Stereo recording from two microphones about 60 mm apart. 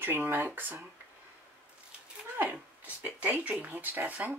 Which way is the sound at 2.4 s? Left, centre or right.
Right.